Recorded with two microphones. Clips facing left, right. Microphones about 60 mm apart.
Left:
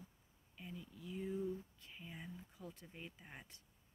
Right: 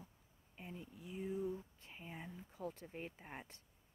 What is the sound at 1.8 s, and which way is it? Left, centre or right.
Speech, right.